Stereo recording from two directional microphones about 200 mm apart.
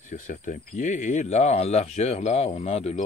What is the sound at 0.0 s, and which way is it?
Speech, 40° left (ahead or behind).